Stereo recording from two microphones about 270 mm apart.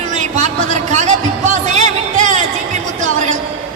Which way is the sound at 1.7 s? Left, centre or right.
Right.